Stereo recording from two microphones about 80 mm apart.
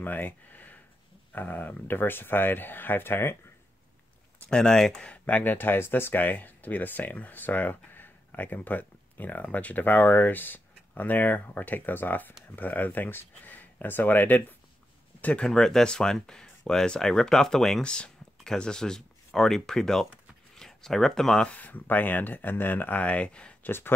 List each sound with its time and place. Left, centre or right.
0.0 s speech: left
4.4 s speech: centre
15.4 s speech: centre